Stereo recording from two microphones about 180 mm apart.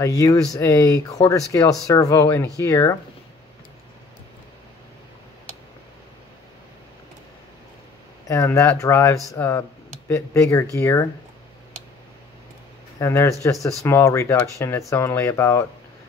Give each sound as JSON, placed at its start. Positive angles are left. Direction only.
{"t": 0.0, "sound": "speech", "side_deg": 20}
{"t": 8.3, "sound": "speech", "side_deg": 15}
{"t": 13.0, "sound": "speech", "side_deg": 15}